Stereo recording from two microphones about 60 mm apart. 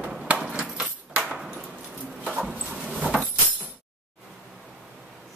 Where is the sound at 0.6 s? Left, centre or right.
Right.